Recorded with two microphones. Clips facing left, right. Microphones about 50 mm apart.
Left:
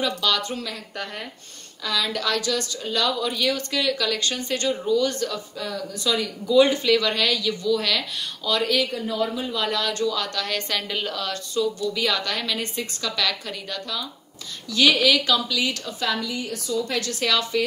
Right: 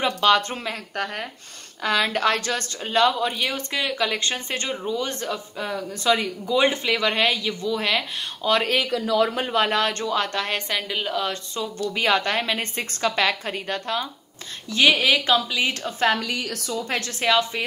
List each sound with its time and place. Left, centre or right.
0.0 s a woman's voice: right
9.0 s speech: right
9.6 s a woman's voice: right
10.7 s a woman's voice: centre
11.1 s speech: right
11.9 s a woman's voice: right
16.2 s speech: right
16.7 s a woman's voice: right